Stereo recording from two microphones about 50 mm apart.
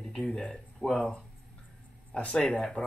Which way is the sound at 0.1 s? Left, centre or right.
Centre.